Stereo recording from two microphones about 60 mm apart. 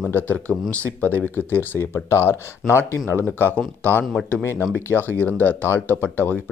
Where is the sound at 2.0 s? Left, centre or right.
Left.